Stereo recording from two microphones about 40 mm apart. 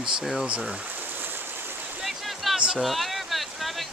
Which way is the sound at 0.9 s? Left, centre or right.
Right.